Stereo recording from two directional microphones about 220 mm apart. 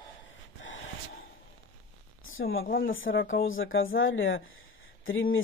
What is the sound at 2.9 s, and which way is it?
Speech, 65° left (ahead or behind).